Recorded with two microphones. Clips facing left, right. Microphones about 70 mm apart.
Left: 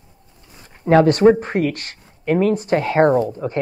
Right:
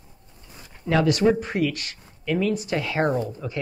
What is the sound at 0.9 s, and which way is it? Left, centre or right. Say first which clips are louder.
Speech: left 8 dB; left.